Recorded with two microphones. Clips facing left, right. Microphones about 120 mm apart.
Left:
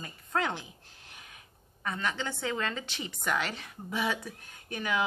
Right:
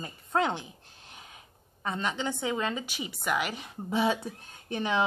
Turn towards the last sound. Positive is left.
turn(degrees=-25)  # may be behind; listen again after turning